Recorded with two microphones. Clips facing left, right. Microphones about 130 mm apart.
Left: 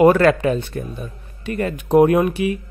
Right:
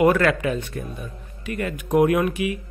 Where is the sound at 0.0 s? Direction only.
35° left (ahead or behind).